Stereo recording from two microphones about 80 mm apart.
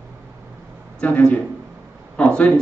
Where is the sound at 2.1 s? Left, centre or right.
Centre.